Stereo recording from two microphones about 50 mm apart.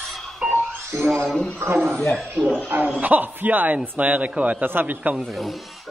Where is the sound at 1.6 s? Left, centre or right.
Right.